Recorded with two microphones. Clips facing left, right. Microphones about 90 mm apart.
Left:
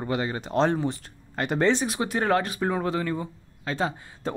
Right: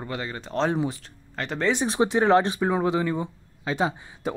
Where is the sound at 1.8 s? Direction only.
30° right (ahead or behind).